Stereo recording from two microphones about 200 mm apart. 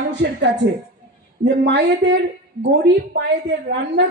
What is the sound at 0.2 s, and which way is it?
Speech, 60° right (ahead or behind).